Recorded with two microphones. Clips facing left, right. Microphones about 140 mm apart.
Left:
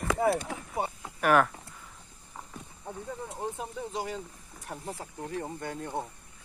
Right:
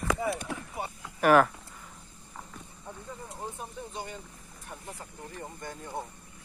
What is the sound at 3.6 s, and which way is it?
Speech, 90° left.